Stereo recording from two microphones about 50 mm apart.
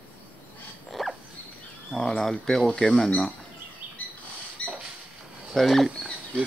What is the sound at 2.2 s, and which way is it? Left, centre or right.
Speech, centre.